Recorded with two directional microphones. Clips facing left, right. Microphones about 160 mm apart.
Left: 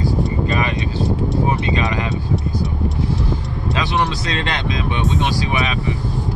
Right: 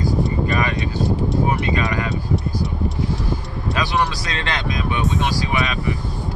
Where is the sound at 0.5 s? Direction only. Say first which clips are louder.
Left 1 dB; 25° left (ahead or behind).